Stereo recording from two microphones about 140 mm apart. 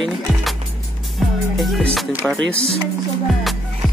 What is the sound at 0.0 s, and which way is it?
Skateboard, centre (ahead or behind).